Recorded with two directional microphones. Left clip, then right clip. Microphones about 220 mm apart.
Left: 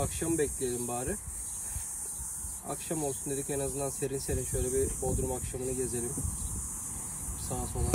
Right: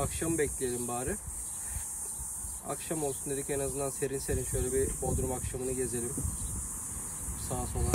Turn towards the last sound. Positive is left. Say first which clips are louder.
# even
turn(degrees=0)  # may be behind; listen again after turning